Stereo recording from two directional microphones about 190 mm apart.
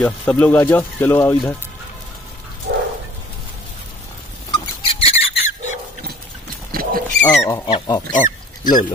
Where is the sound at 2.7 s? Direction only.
70° right (ahead or behind).